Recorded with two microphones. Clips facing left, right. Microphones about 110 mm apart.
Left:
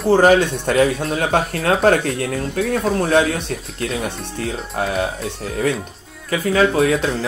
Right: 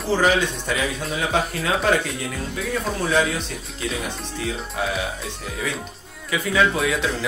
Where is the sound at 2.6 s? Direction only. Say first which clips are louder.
Left 9 dB; 60° left (ahead or behind).